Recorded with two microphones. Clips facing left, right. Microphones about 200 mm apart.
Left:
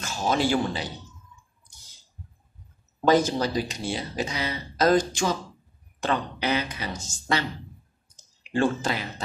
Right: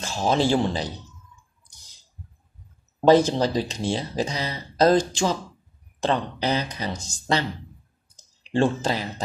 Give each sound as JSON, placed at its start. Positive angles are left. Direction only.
{"t": 0.0, "sound": "speech", "side_deg": -30}
{"t": 3.1, "sound": "speech", "side_deg": -30}
{"t": 8.2, "sound": "clicking", "side_deg": -35}